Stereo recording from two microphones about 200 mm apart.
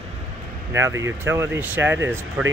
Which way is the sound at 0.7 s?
15° right (ahead or behind).